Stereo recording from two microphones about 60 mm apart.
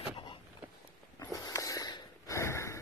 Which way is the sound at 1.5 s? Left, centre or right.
Left.